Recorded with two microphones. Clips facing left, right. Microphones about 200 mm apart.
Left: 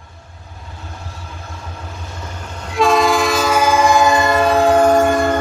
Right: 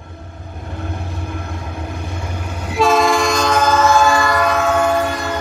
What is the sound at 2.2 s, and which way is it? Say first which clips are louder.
Train: right 4 dB; 10° right (ahead or behind).